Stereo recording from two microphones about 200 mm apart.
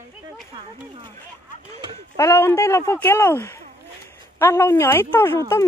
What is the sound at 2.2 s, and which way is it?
Speech, 15° left (ahead or behind).